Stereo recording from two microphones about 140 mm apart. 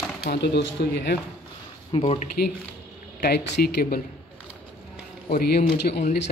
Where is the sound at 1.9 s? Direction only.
40° left (ahead or behind).